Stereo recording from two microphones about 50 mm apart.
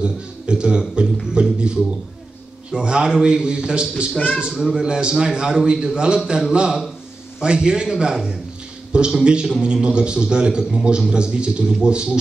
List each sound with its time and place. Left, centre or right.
0.0 s a man's voice: centre